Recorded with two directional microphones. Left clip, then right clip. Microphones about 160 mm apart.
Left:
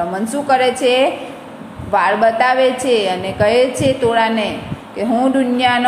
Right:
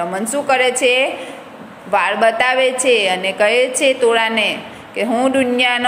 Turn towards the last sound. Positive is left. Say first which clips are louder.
# left 1 dB
turn(degrees=-25)  # may be behind; listen again after turning